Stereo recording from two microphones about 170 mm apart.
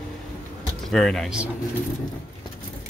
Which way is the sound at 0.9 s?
5° left (ahead or behind).